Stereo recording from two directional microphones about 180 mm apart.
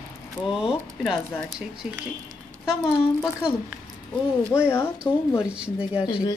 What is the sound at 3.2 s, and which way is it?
Speech, 5° right (ahead or behind).